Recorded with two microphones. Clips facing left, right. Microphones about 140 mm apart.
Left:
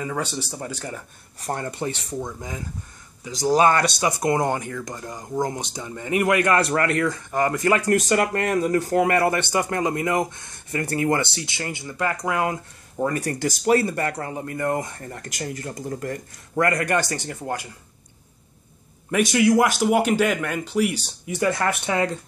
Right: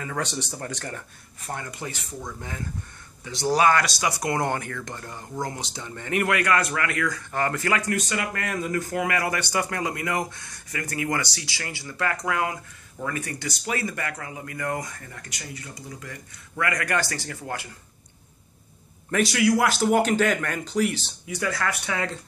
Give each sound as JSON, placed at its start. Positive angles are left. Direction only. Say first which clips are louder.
{"t": 0.0, "sound": "speech", "louder": "left 2 dB", "side_deg": 10}
{"t": 1.4, "sound": "speech", "louder": "left 6 dB", "side_deg": 35}
{"t": 3.5, "sound": "speech", "louder": "left 2 dB", "side_deg": 25}
{"t": 7.2, "sound": "speech", "louder": "left 4 dB", "side_deg": 15}
{"t": 7.8, "sound": "speech", "louder": "left 8 dB", "side_deg": 45}
{"t": 12.9, "sound": "speech", "louder": "left 7 dB", "side_deg": 40}
{"t": 15.0, "sound": "speech", "louder": "left 8 dB", "side_deg": 45}
{"t": 16.8, "sound": "speech", "louder": "left 4 dB", "side_deg": 20}
{"t": 19.3, "sound": "speech", "louder": "left 4 dB", "side_deg": 20}
{"t": 21.3, "sound": "speech", "louder": "left 5 dB", "side_deg": 25}